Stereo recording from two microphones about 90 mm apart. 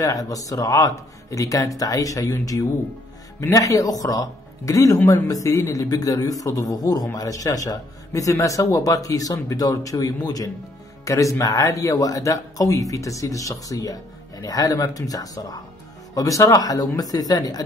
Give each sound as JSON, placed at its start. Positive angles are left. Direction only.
{"t": 0.0, "sound": "speech", "side_deg": 40}